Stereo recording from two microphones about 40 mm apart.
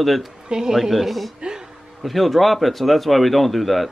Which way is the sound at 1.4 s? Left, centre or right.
Centre.